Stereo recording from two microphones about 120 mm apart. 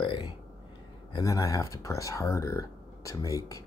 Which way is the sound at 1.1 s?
25° left (ahead or behind).